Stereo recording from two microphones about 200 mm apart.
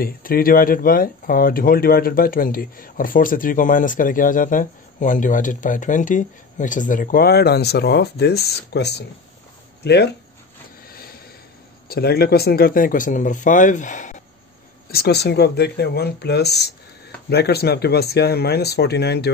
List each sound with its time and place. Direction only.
0.0 s speech: 45° left (ahead or behind)
10.9 s a sound: 50° left (ahead or behind)
11.9 s speech: 50° left (ahead or behind)
14.9 s speech: 50° left (ahead or behind)